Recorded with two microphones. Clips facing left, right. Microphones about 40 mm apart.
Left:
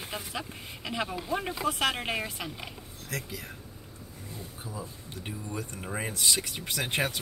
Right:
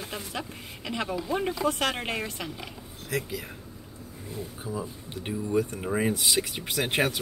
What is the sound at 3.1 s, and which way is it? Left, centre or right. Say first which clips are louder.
Speech: right 6 dB; centre.